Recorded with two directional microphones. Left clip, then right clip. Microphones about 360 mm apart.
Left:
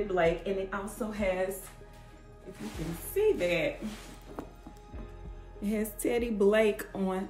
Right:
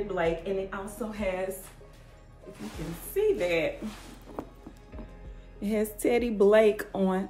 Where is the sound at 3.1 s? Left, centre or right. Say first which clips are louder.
Right 1 dB; centre.